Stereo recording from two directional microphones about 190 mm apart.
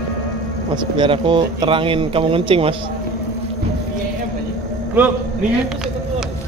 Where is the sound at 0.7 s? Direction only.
25° right (ahead or behind).